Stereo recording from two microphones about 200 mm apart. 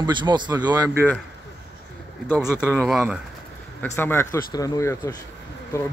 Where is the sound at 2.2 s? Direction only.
10° left (ahead or behind).